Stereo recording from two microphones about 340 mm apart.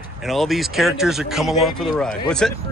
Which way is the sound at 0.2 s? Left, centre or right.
Centre.